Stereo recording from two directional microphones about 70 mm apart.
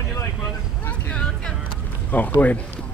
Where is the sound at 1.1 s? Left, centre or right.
Centre.